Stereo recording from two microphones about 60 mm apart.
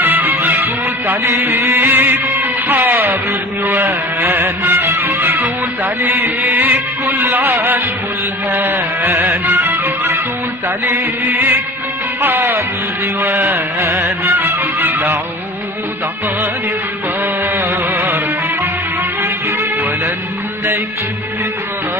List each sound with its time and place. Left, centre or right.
0.0 s music: right
1.3 s a sound: right
2.8 s music: right
3.6 s a sound: right
4.6 s music: right
5.2 s music: right
10.9 s music: right
13.7 s music: right
17.6 s music: right